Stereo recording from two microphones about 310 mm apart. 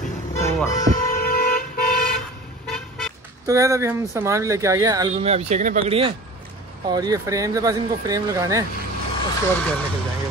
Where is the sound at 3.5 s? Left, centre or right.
Centre.